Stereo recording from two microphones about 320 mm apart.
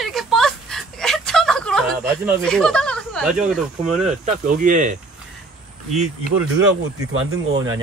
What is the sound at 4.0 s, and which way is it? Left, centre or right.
Speech, right.